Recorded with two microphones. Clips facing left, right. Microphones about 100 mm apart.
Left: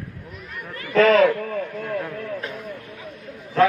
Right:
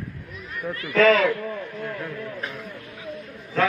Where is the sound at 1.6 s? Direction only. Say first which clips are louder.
Left 4 dB; 65° left (ahead or behind).